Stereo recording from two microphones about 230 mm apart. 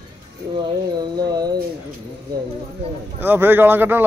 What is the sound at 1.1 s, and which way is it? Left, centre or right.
Speech, centre.